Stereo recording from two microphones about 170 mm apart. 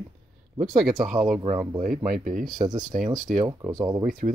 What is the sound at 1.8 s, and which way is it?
Speech, 55° right (ahead or behind).